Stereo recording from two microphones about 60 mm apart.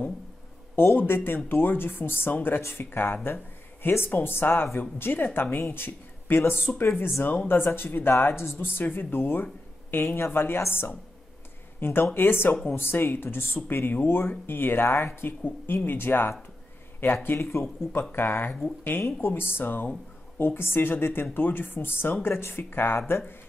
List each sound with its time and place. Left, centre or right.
0.7 s speech: left